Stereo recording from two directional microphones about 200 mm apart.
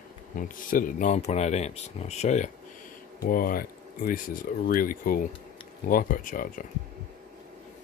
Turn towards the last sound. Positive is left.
turn(degrees=40)  # may be behind; listen again after turning